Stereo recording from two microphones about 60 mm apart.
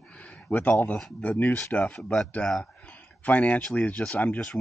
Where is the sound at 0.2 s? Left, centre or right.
Left.